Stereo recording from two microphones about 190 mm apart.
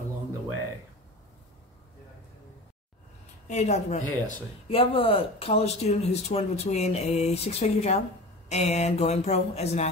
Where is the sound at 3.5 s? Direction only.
35° left (ahead or behind).